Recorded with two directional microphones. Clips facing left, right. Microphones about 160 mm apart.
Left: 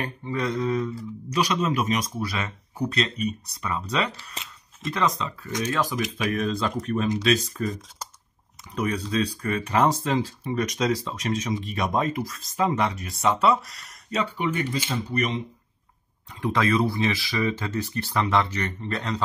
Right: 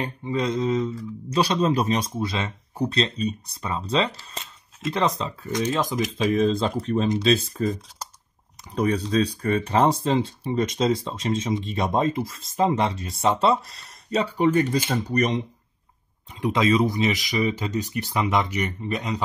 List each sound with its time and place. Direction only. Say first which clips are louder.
0.0 s speech: right 2 dB; 20° right (ahead or behind); by 15.4 s 40° right (ahead or behind)
16.3 s speech: right 2 dB; 20° right (ahead or behind)